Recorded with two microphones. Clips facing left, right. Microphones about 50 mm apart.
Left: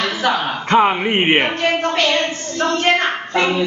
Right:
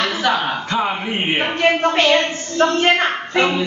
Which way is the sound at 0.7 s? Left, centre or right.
Left.